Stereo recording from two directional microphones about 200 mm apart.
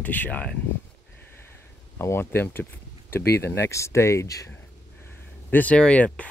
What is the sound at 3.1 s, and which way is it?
Speech, 50° left (ahead or behind).